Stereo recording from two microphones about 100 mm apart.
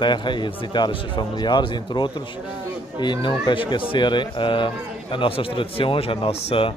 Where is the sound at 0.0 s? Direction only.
50° left (ahead or behind).